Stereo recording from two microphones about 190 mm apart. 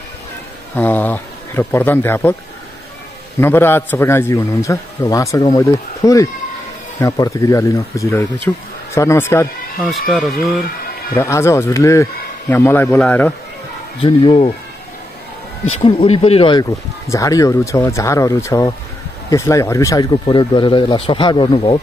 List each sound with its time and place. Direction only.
0.7 s a man's voice: 10° left (ahead or behind)
3.3 s a man's voice: 10° left (ahead or behind)
9.8 s speech: centre (ahead or behind)
11.1 s a man's voice: 15° left (ahead or behind)
14.0 s speech: 30° left (ahead or behind)
15.8 s speech: 30° left (ahead or behind)
17.1 s a man's voice: 15° left (ahead or behind)